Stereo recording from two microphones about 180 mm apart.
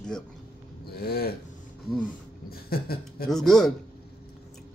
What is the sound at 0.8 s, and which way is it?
Speech, 60° left (ahead or behind).